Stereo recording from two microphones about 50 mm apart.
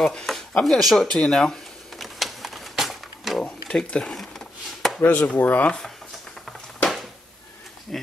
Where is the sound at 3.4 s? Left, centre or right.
Centre.